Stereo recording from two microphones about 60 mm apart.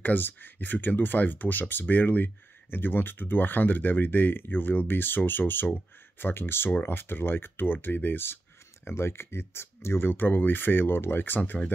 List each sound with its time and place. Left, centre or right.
0.0 s speech: left